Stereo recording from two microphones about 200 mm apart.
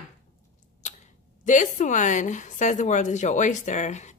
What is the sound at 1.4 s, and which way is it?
Speech, 40° left (ahead or behind).